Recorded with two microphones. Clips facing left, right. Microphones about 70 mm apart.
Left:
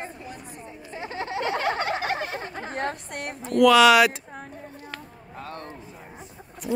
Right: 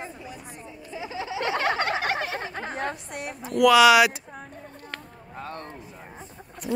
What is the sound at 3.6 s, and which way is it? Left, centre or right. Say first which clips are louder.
Speech: even; centre.